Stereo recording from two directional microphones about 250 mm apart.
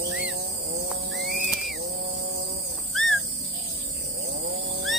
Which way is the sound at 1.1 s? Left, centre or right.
Right.